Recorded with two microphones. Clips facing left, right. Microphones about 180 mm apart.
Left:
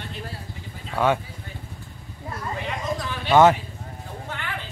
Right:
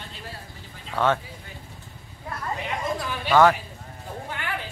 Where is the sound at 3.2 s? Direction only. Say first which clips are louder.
Left 2 dB; 20° left (ahead or behind).